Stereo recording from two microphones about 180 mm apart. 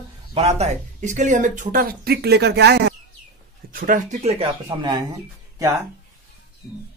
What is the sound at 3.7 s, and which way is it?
Speech, 50° right (ahead or behind).